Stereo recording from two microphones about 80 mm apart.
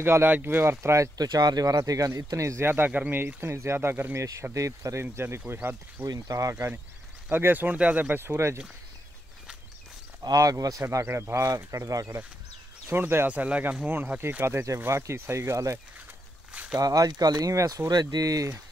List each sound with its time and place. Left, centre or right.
0.0 s speech: right
1.1 s speech: right
2.7 s speech: right
4.6 s speech: right
5.0 s speech: right
6.0 s speech: right
6.5 s speech: right
10.2 s speech: right
13.0 s speech: right
13.3 s speech: centre
14.4 s speech: right
16.7 s speech: right